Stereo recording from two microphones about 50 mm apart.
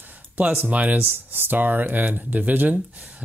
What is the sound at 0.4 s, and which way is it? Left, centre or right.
Speech, right.